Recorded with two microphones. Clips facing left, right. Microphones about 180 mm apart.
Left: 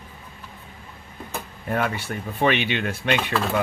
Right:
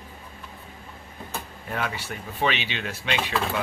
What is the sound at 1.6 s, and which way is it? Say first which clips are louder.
Speech: left 6 dB; 50° left (ahead or behind).